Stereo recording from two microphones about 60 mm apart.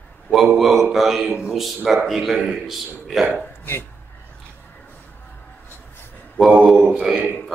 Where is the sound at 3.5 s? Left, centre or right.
Left.